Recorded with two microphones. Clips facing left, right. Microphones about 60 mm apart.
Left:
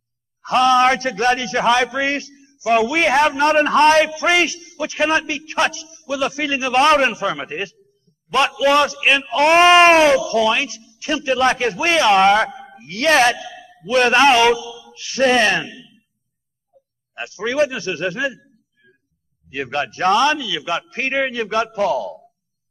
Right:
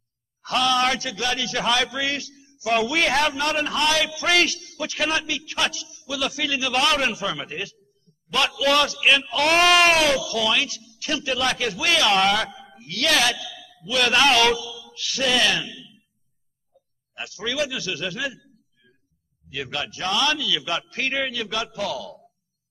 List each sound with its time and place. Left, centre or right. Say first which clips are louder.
0.4 s a man's voice: left 7 dB; left
17.1 s a man's voice: left 6 dB; left
19.5 s a man's voice: left 7 dB; left